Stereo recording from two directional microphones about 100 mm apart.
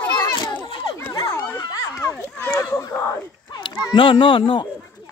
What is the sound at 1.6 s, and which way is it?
Children playing, 35° left (ahead or behind).